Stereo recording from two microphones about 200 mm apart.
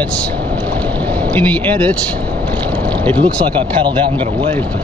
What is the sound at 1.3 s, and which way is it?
Speech, 10° left (ahead or behind).